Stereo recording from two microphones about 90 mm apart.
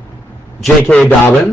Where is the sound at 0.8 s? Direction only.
20° left (ahead or behind).